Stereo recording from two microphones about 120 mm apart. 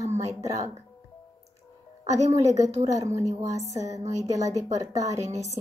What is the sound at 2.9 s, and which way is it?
A woman's voice, 25° right (ahead or behind).